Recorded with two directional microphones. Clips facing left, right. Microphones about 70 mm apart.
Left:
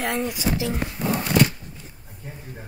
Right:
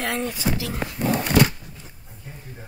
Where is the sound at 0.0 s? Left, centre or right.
Centre.